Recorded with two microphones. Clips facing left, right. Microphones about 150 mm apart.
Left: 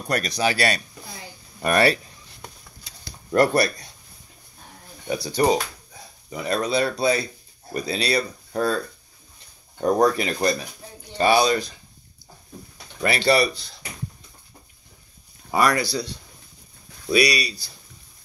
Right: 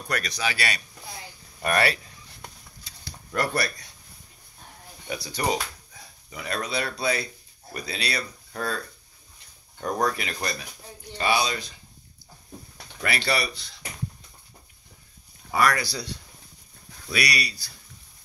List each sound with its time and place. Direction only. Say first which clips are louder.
0.1 s speech: left 6 dB; 35° left (ahead or behind)
3.3 s speech: left 8 dB; 30° left (ahead or behind)
5.1 s speech: left 7 dB; 30° left (ahead or behind)
9.8 s speech: left 7 dB; 35° left (ahead or behind)
13.0 s speech: left 8 dB; 30° left (ahead or behind)
15.5 s speech: left 3 dB; 25° left (ahead or behind)
17.1 s speech: left 8 dB; 25° left (ahead or behind)